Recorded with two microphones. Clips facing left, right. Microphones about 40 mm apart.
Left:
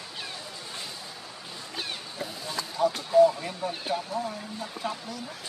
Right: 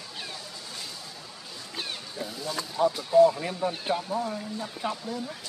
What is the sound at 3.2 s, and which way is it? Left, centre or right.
Speech, centre.